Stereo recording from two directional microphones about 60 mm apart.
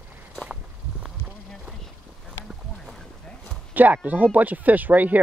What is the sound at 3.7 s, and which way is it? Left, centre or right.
Speech, right.